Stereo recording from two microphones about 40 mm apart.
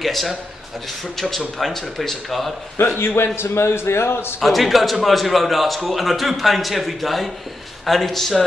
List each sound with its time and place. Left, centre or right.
0.0 s a man's voice: centre
2.8 s a man's voice: left
4.4 s a man's voice: centre